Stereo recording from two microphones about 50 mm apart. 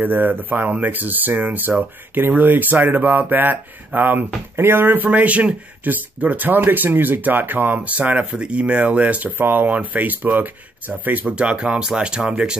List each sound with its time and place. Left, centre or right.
0.0 s speech: right
9.4 s speech: right
11.2 s speech: right